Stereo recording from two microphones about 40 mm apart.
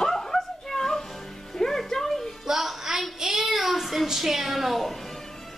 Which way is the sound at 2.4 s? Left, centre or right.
Centre.